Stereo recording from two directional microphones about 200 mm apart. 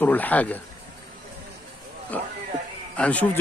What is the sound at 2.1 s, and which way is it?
Speech, 5° left (ahead or behind).